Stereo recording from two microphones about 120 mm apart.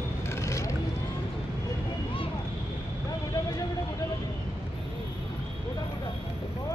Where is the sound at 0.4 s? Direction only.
25° left (ahead or behind).